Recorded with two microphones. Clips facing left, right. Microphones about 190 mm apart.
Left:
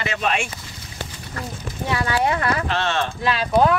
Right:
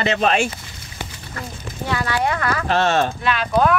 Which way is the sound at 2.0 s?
25° left (ahead or behind).